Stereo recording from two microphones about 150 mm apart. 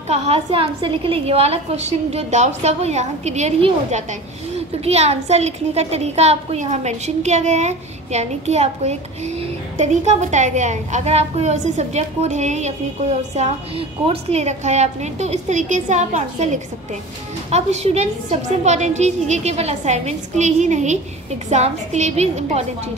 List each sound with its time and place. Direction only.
0.1 s a woman's voice: 40° right (ahead or behind)